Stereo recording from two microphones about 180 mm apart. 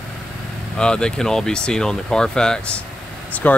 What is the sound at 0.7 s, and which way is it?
Speech, 5° left (ahead or behind).